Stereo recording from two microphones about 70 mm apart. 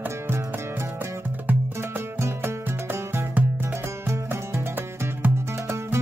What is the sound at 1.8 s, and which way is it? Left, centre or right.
Music, right.